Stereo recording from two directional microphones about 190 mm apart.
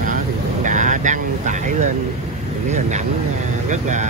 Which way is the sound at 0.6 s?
40° right (ahead or behind).